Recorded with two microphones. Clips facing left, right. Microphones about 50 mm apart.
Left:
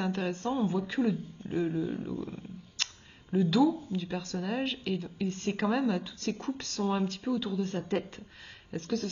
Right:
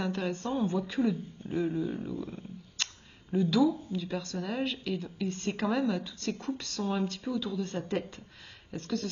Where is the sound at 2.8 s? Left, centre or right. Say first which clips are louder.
Even; centre.